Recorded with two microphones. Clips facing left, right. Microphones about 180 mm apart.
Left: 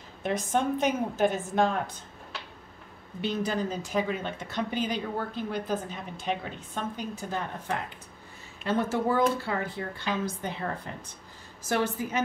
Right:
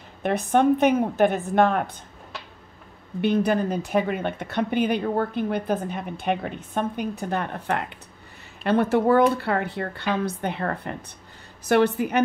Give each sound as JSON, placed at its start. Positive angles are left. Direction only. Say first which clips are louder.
{"t": 0.2, "sound": "speech", "louder": "right 7 dB", "side_deg": -60}
{"t": 3.2, "sound": "speech", "louder": "right 8 dB", "side_deg": -60}